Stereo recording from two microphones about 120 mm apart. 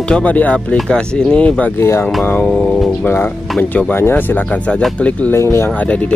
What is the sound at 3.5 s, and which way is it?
Speech, 10° left (ahead or behind).